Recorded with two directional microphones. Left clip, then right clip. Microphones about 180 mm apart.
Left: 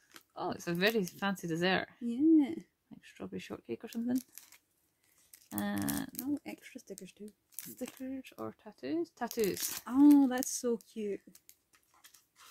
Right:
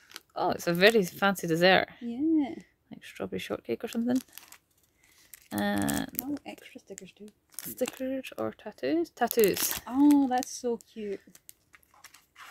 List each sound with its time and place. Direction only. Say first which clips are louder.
0.1 s speech: right 9 dB; 45° right (ahead or behind)
2.0 s speech: left 1 dB; 15° left (ahead or behind)
2.9 s speech: right 10 dB; 45° right (ahead or behind)
5.5 s speech: right 7 dB; 45° right (ahead or behind)
6.6 s speech: right 2 dB; 10° left (ahead or behind)
7.8 s speech: right 11 dB; 45° right (ahead or behind)
10.1 s speech: right 3 dB; 15° left (ahead or behind)